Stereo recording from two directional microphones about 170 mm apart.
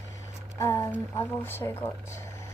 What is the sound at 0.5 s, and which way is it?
A woman's voice, 20° left (ahead or behind).